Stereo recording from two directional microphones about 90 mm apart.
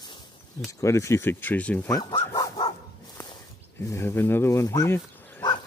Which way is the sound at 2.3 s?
45° left (ahead or behind).